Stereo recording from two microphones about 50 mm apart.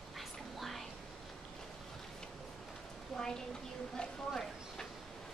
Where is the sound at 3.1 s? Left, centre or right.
Centre.